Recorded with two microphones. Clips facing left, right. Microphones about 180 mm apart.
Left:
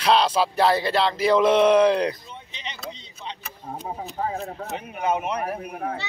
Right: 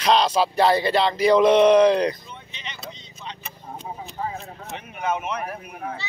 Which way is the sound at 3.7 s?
40° left (ahead or behind).